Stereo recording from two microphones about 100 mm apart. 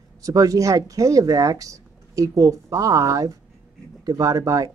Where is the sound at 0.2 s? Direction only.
35° right (ahead or behind).